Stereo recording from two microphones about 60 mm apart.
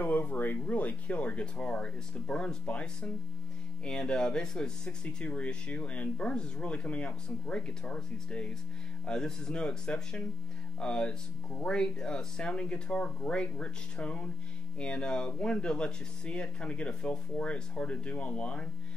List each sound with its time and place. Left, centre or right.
0.0 s speech: left